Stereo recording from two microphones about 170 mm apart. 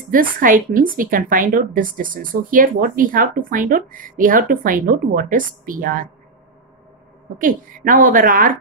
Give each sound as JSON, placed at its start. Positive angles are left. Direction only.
{"t": 0.1, "sound": "a woman's voice", "side_deg": -55}
{"t": 7.3, "sound": "a woman's voice", "side_deg": -55}